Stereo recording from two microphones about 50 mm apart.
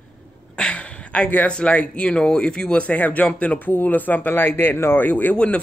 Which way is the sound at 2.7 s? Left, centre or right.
Left.